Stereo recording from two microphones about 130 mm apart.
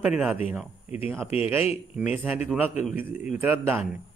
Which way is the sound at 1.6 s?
55° left (ahead or behind).